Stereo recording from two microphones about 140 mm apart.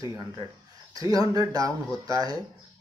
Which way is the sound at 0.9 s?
25° right (ahead or behind).